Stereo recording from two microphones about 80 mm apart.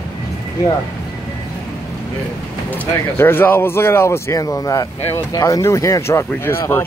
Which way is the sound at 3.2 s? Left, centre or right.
Left.